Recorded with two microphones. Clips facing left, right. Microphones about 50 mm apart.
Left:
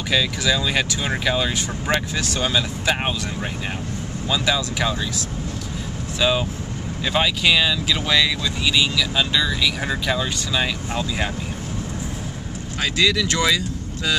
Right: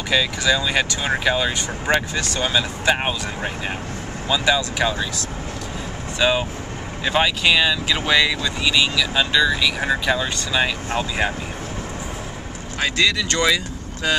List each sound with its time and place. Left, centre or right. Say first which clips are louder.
0.1 s speech: right 2 dB; centre
10.9 s speech: right 3 dB; right
12.9 s speech: left 1 dB; centre